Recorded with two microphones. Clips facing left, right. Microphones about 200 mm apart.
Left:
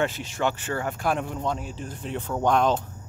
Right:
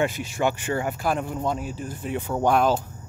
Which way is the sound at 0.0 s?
10° right (ahead or behind).